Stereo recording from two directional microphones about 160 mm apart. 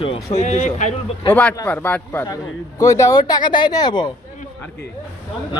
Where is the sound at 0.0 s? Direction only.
40° left (ahead or behind).